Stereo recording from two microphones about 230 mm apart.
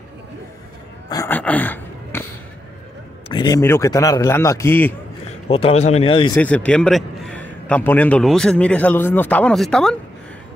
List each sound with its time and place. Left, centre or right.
1.0 s speech: centre
3.3 s a man's voice: centre
5.5 s speech: left
6.3 s a man's voice: centre